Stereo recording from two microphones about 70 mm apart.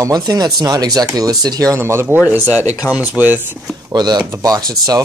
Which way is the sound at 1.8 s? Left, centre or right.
Right.